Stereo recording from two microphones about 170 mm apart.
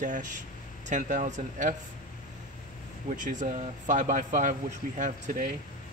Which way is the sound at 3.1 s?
50° right (ahead or behind).